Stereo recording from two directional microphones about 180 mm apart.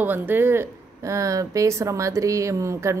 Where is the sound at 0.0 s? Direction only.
10° right (ahead or behind).